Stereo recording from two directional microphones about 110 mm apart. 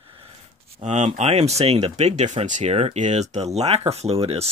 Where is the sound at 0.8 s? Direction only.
90° right.